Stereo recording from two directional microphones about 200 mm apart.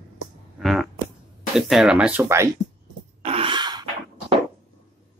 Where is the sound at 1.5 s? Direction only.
Centre (ahead or behind).